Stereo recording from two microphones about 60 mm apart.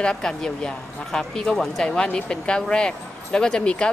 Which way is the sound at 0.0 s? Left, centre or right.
Centre.